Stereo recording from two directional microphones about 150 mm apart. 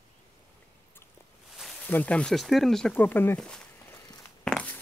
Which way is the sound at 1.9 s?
10° left (ahead or behind).